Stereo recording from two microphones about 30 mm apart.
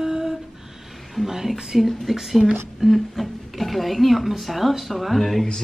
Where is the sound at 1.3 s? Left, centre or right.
Centre.